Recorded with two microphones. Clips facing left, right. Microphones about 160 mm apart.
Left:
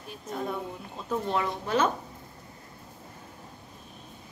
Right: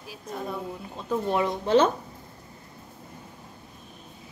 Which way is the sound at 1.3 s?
20° right (ahead or behind).